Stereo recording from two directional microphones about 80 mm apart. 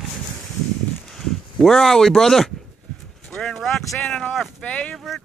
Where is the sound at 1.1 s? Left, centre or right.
Centre.